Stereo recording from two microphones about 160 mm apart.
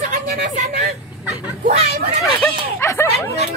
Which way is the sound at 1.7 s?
40° right (ahead or behind).